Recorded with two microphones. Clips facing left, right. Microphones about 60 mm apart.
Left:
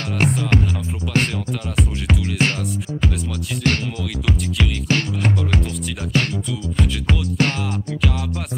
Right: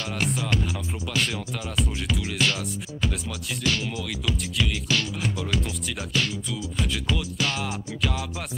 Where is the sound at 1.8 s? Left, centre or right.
Left.